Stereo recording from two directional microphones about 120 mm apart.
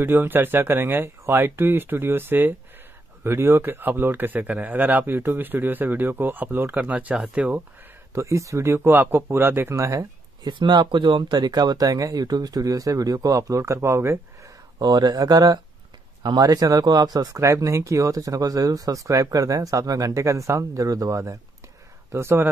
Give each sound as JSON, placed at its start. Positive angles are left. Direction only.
{"t": 0.0, "sound": "speech", "side_deg": -15}
{"t": 8.1, "sound": "speech", "side_deg": -25}
{"t": 10.4, "sound": "speech", "side_deg": -40}
{"t": 14.8, "sound": "speech", "side_deg": -35}